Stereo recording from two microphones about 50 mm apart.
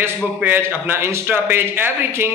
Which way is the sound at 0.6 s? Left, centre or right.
Right.